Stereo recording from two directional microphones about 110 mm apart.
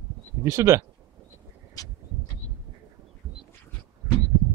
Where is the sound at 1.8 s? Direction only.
30° left (ahead or behind).